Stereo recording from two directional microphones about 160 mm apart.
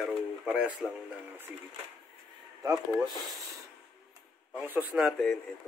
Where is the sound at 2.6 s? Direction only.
20° right (ahead or behind).